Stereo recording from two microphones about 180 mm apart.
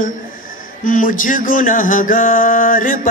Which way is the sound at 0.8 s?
50° left (ahead or behind).